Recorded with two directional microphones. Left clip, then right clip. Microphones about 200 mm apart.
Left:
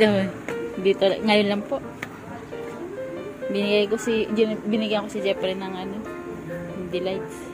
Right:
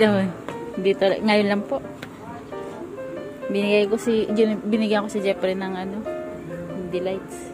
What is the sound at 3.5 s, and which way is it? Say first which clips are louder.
A woman's voice: right 2 dB; 20° right (ahead or behind).